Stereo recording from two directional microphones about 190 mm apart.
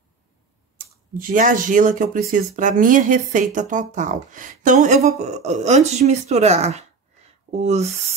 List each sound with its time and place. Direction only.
0.7 s speech: 45° right (ahead or behind)